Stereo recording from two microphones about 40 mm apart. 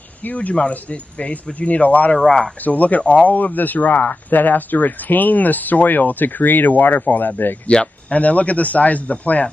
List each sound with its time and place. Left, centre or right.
0.3 s a man's voice: left
7.6 s speech: left
8.1 s a man's voice: left